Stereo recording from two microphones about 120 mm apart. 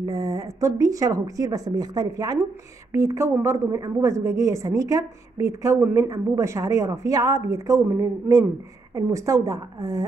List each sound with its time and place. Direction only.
0.0 s a woman's voice: 30° right (ahead or behind)